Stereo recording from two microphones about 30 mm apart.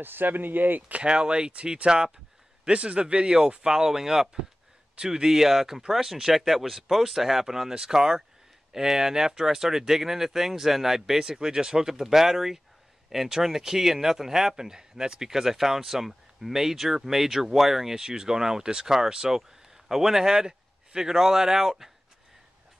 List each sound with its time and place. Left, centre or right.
0.2 s speech: right
1.0 s speech: right
1.9 s speech: right
2.6 s speech: right; by 17.9 s centre
17.9 s speech: right